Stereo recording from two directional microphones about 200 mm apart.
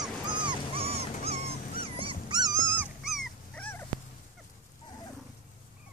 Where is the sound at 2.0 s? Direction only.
20° right (ahead or behind).